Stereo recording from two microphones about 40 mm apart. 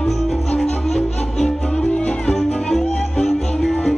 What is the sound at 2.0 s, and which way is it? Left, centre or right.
Music, left.